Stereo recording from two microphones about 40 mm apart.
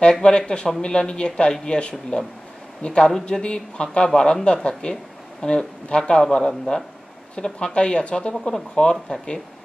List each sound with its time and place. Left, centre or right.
0.2 s speech: left